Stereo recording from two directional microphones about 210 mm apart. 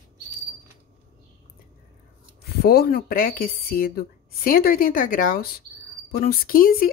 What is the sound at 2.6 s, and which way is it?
A woman's voice, 45° left (ahead or behind).